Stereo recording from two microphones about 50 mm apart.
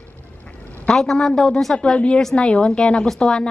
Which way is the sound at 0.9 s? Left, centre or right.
Centre.